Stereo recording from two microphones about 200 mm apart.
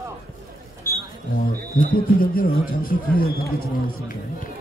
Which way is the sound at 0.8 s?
10° left (ahead or behind).